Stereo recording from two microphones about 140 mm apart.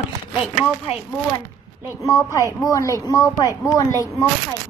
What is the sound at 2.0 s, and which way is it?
Speech, 20° left (ahead or behind).